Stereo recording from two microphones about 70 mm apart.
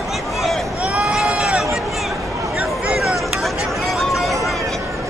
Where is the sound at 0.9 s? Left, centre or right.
Centre.